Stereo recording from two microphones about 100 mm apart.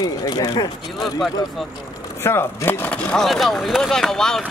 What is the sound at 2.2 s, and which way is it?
Speech, 25° left (ahead or behind).